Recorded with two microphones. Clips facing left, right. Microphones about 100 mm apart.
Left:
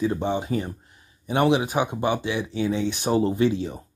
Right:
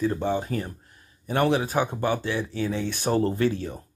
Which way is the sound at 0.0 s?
15° left (ahead or behind).